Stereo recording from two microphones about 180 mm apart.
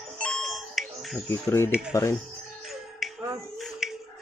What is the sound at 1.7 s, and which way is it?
Speech, 5° right (ahead or behind).